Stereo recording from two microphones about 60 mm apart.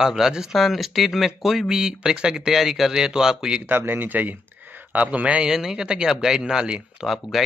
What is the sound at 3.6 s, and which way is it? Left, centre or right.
Speech, right.